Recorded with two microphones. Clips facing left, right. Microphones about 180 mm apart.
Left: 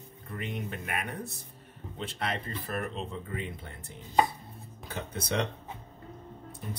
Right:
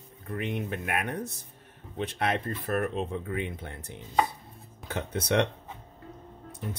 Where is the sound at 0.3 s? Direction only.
60° right (ahead or behind).